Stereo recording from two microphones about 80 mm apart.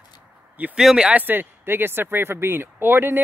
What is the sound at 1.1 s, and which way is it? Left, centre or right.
Speech, right.